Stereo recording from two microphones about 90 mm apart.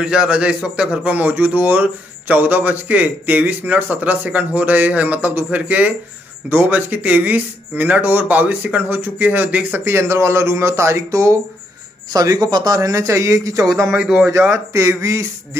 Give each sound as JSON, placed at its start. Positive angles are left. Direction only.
{"t": 0.0, "sound": "a man's voice", "side_deg": -10}
{"t": 13.7, "sound": "speech", "side_deg": 0}
{"t": 13.9, "sound": "a man's voice", "side_deg": -10}
{"t": 14.5, "sound": "speech", "side_deg": -35}